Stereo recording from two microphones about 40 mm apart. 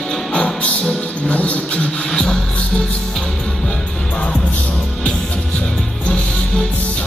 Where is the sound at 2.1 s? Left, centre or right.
Left.